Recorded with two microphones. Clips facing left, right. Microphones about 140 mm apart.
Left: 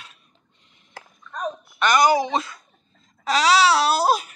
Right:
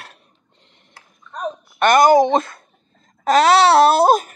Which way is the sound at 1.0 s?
90° left.